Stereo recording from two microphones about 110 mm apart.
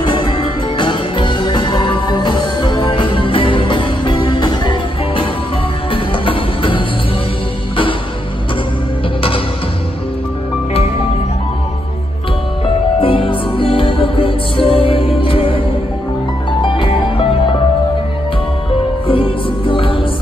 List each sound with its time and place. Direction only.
0.0 s music: 45° left (ahead or behind)
13.0 s music: 50° left (ahead or behind)
16.6 s music: 50° left (ahead or behind)
19.0 s music: 55° left (ahead or behind)